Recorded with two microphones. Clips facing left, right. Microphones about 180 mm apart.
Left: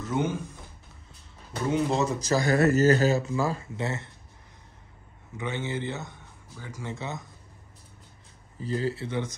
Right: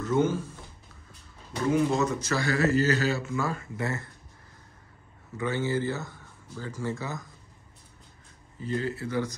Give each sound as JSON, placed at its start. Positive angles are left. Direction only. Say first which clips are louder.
{"t": 0.1, "sound": "speech", "louder": "right 3 dB", "side_deg": 15}
{"t": 1.7, "sound": "speech", "louder": "right 1 dB", "side_deg": 30}
{"t": 2.5, "sound": "speech", "louder": "left 4 dB", "side_deg": 45}
{"t": 3.3, "sound": "speech", "louder": "left 2 dB", "side_deg": 30}
{"t": 5.4, "sound": "speech", "louder": "right 4 dB", "side_deg": 20}
{"t": 8.6, "sound": "speech", "louder": "left 1 dB", "side_deg": 35}